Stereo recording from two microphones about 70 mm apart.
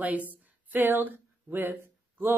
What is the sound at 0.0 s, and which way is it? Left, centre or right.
A woman's voice, right.